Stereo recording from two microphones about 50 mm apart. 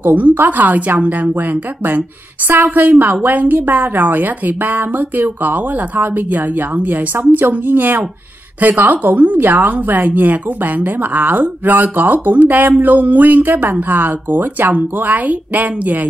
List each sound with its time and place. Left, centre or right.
0.0 s a woman's voice: right